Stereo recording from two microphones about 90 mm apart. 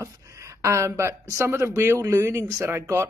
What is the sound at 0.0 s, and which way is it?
Speech, 35° right (ahead or behind).